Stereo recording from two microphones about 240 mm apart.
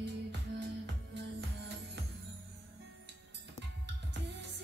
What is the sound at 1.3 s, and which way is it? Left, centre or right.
Music, right.